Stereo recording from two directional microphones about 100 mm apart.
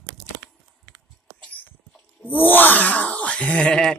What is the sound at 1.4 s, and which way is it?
Wail, 15° left (ahead or behind).